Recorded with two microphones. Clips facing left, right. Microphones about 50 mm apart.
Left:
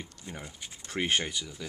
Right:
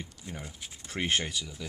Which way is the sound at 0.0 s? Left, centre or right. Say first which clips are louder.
Even; centre.